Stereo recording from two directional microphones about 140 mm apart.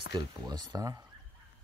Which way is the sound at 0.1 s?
30° right (ahead or behind).